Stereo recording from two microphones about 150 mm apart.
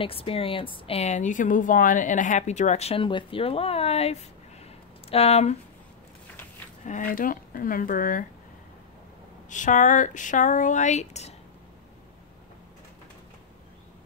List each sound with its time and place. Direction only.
0.0 s speech: 40° left (ahead or behind)
6.8 s speech: 55° left (ahead or behind)
9.5 s speech: 55° left (ahead or behind)